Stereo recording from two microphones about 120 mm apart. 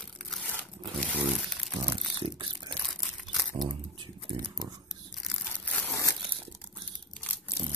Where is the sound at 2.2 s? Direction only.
40° right (ahead or behind).